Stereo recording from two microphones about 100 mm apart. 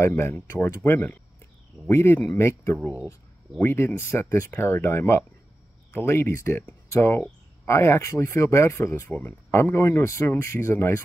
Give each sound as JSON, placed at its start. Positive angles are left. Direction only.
{"t": 0.0, "sound": "speech", "side_deg": 25}